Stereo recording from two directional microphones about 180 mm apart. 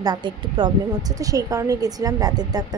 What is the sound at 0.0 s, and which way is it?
Speech, 25° right (ahead or behind).